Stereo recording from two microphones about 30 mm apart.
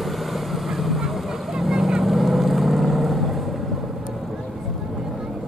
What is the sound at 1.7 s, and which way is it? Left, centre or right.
Boat, centre.